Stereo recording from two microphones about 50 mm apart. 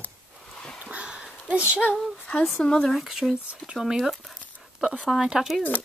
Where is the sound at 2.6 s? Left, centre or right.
Centre.